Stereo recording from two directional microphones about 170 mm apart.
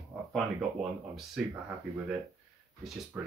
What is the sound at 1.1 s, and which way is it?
Speech, 5° right (ahead or behind).